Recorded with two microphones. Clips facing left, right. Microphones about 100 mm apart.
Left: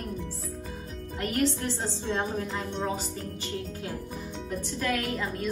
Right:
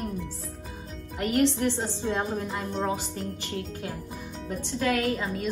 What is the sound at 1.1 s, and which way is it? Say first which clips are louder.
A woman's voice: right 4 dB; 20° right (ahead or behind).